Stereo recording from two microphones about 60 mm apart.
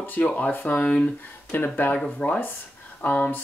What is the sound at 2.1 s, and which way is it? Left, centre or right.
Speech, left.